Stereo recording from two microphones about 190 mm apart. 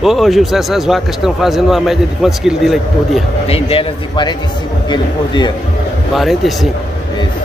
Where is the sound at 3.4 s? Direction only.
30° left (ahead or behind).